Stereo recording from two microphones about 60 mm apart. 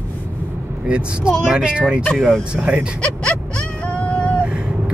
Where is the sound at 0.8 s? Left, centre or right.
Centre.